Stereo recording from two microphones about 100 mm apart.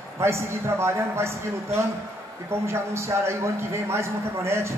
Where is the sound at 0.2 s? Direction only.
25° right (ahead or behind).